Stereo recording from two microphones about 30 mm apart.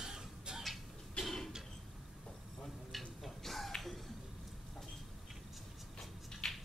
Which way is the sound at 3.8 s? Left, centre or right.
Centre.